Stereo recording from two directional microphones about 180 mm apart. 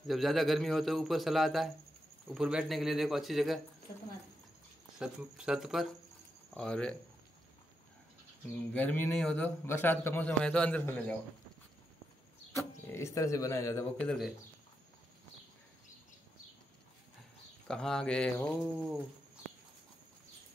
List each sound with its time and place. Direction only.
0.0 s a man's voice: centre (ahead or behind)
4.9 s a man's voice: 5° right (ahead or behind)
8.7 s a man's voice: 10° left (ahead or behind)
12.9 s a man's voice: 15° left (ahead or behind)
13.9 s a man's voice: 5° left (ahead or behind)
17.6 s a man's voice: 5° left (ahead or behind)